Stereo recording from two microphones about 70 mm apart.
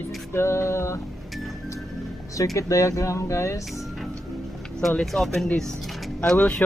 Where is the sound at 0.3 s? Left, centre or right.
Left.